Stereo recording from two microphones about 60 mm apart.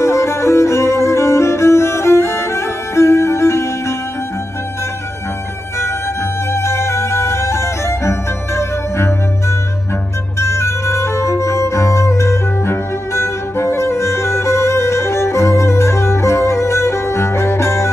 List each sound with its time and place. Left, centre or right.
0.0 s music: left
6.5 s music: left
10.4 s music: left